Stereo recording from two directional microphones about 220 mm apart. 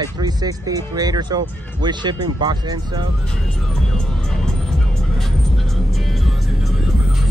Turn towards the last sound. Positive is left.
turn(degrees=0)  # may be behind; listen again after turning